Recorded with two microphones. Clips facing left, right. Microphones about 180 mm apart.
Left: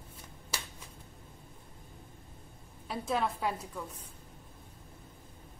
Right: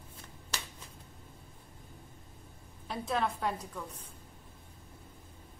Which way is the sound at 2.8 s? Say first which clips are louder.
Left 1 dB; centre (ahead or behind).